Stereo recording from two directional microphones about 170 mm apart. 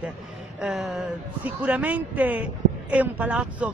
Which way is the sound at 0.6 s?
5° right (ahead or behind).